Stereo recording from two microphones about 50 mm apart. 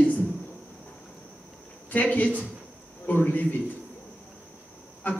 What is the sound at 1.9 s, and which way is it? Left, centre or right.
Speech, left.